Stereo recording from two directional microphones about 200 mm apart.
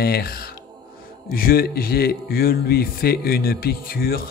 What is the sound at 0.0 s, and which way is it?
A man's voice, 50° left (ahead or behind).